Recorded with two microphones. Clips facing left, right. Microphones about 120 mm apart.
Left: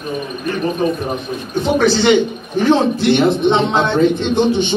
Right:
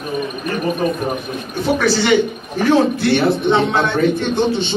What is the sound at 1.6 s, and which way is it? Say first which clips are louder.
A man's voice: left 2 dB; 20° left (ahead or behind).